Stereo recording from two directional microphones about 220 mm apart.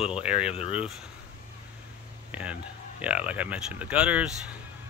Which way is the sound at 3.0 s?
5° right (ahead or behind).